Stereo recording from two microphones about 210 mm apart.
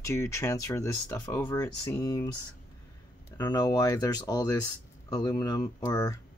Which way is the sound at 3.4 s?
20° left (ahead or behind).